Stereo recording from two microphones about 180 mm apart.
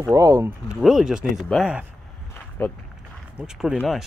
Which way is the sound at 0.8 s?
Centre (ahead or behind).